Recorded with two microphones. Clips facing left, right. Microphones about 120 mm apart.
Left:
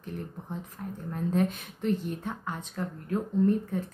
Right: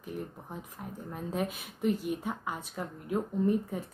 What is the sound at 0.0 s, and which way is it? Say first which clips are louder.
Speech: left 1 dB; 5° right (ahead or behind).